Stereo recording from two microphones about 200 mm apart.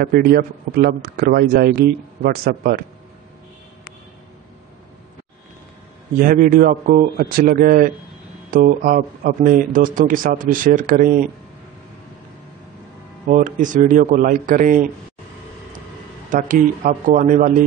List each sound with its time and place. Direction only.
0.0 s a man's voice: 50° right (ahead or behind)
6.1 s a man's voice: 45° right (ahead or behind)
13.3 s speech: 40° right (ahead or behind)
16.3 s speech: 40° right (ahead or behind)